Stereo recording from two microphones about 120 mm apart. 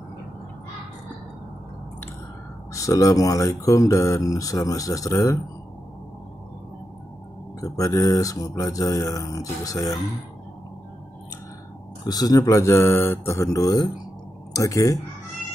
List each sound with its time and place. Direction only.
2.7 s speech: 30° left (ahead or behind)
7.6 s speech: 30° left (ahead or behind)
12.1 s speech: 35° left (ahead or behind)